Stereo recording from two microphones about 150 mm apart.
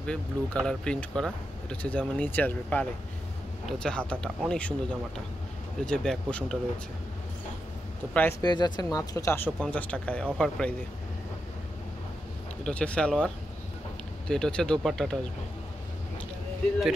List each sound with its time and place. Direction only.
0.0 s speech: 5° left (ahead or behind)
8.1 s speech: 10° left (ahead or behind)
8.4 s speech: 30° left (ahead or behind); by 10.7 s 5° left (ahead or behind)
12.6 s speech: 5° left (ahead or behind)